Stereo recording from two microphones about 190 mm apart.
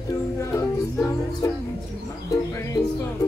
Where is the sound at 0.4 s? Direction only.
15° left (ahead or behind).